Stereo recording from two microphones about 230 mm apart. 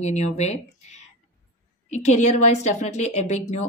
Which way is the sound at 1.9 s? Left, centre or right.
Left.